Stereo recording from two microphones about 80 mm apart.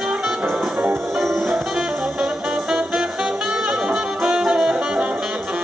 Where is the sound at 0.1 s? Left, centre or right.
Centre.